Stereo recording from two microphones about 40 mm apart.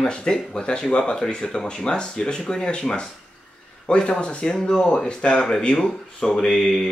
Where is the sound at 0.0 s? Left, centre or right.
Centre.